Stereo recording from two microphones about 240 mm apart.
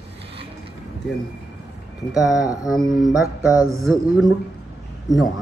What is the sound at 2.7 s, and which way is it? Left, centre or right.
Speech, centre.